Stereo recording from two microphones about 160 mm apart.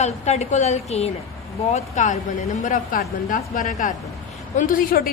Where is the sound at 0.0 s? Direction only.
45° left (ahead or behind).